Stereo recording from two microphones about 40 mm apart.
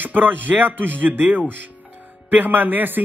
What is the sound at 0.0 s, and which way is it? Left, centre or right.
Speech, right.